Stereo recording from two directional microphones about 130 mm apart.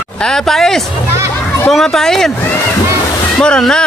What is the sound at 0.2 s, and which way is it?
Speech, 5° left (ahead or behind).